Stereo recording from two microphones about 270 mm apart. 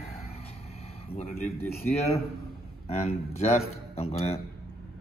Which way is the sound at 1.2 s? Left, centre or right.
Left.